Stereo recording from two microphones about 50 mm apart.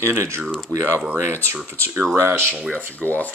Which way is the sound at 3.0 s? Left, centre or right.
Left.